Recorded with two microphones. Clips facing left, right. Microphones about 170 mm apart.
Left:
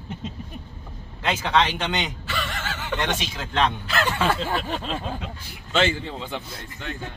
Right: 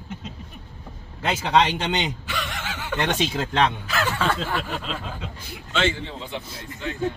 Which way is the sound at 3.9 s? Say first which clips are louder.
Left 1 dB; 5° right (ahead or behind).